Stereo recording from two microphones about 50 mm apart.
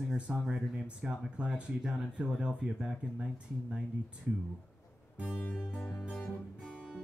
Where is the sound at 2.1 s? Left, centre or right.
Centre.